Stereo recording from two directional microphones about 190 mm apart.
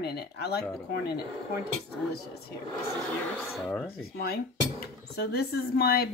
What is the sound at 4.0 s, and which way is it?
Speech, 55° left (ahead or behind).